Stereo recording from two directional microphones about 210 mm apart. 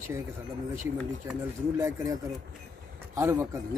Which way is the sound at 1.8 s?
15° right (ahead or behind).